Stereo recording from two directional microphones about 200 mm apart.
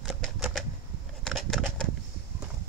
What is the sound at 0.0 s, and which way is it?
Typewriter, centre (ahead or behind).